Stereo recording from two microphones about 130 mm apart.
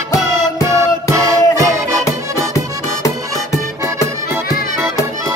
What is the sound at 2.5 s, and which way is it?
Music, 25° left (ahead or behind).